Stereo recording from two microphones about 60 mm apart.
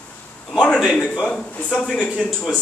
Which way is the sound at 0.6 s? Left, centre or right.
Centre.